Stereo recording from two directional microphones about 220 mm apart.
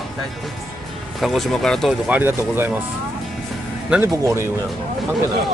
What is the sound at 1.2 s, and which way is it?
Speech, centre (ahead or behind).